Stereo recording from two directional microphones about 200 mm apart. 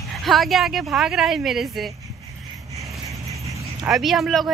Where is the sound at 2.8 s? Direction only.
15° right (ahead or behind).